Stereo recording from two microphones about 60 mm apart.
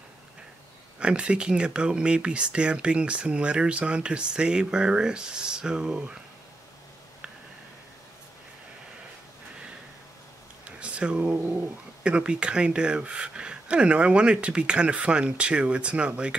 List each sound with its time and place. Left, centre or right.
0.9 s speech: centre
10.6 s a sound: centre
12.0 s speech: centre